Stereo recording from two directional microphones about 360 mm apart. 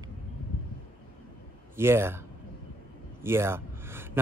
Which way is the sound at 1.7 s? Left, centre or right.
Centre.